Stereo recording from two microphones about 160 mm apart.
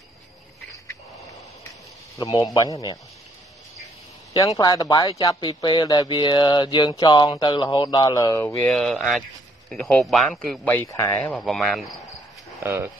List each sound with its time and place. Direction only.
2.1 s speech: 25° left (ahead or behind)
4.3 s speech: 25° left (ahead or behind)
8.6 s speech: centre (ahead or behind)
10.9 s speech: 20° left (ahead or behind)
11.1 s speech: 5° left (ahead or behind)
12.6 s speech: 15° right (ahead or behind)